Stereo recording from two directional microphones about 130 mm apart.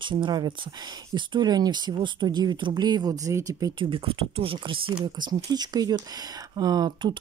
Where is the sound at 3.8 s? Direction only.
45° right (ahead or behind).